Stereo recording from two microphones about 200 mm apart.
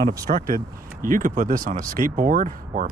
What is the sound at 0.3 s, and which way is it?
Speech, 40° right (ahead or behind).